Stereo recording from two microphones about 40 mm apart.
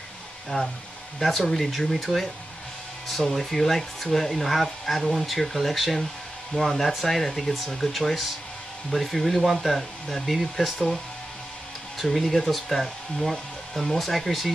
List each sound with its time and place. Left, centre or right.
0.5 s speech: centre
1.4 s speech: centre
12.0 s speech: centre